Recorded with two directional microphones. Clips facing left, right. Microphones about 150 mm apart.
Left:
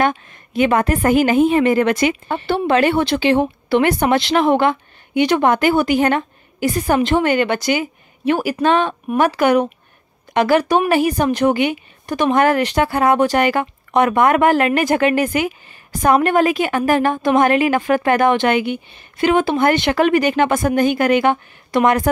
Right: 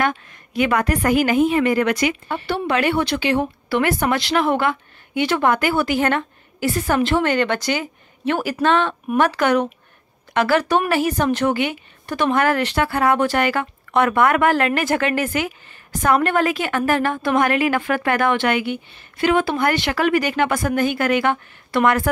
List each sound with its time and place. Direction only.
0.0 s a woman's voice: 25° left (ahead or behind)